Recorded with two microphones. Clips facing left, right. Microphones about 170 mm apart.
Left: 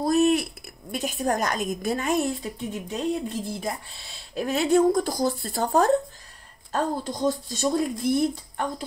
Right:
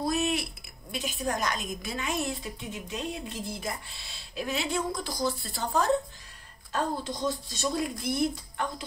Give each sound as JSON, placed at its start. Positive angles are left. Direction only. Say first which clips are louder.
{"t": 0.0, "sound": "a woman's voice", "louder": "left 8 dB", "side_deg": 40}